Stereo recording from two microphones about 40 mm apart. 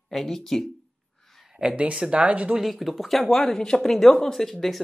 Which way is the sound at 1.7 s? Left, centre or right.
Right.